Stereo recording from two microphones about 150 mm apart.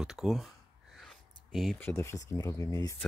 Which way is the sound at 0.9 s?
Centre (ahead or behind).